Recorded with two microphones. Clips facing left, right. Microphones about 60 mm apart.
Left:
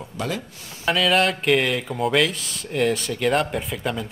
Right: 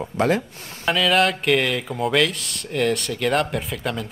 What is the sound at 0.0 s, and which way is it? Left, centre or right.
Speech, right.